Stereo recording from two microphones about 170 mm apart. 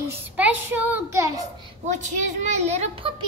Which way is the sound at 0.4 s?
10° right (ahead or behind).